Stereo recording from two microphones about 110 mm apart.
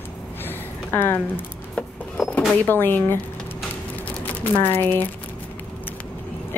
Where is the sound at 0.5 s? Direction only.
20° left (ahead or behind).